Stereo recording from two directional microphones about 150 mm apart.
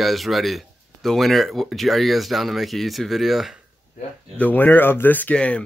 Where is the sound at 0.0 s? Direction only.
Centre (ahead or behind).